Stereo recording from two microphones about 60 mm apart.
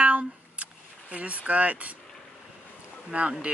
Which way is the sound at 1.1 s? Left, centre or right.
Right.